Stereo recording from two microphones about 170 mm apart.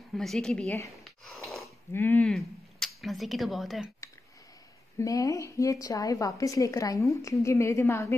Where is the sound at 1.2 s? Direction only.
Centre (ahead or behind).